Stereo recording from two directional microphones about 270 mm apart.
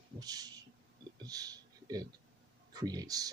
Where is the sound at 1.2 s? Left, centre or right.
Centre.